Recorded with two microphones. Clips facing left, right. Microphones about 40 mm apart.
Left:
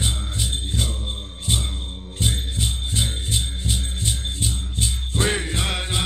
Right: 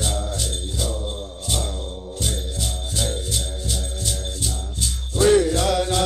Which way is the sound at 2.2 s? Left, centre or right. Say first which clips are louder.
Left 3 dB; left.